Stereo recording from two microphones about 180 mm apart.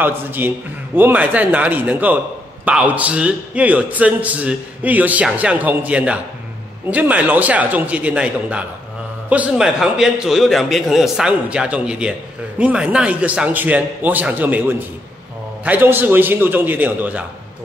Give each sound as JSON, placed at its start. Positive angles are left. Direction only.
{"t": 0.0, "sound": "a man's voice", "side_deg": -10}